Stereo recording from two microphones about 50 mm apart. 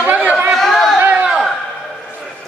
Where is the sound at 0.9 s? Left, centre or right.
Right.